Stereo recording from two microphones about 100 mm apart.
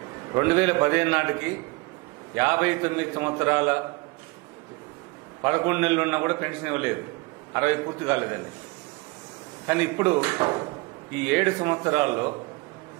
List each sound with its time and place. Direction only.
0.3 s a man's voice: 25° right (ahead or behind)
2.3 s a man's voice: 25° right (ahead or behind)
5.4 s a man's voice: 25° right (ahead or behind)
9.7 s a man's voice: 25° right (ahead or behind)
11.2 s a man's voice: 20° right (ahead or behind)